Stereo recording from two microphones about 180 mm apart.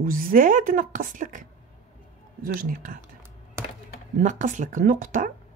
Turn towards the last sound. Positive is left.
turn(degrees=-50)  # may be behind; listen again after turning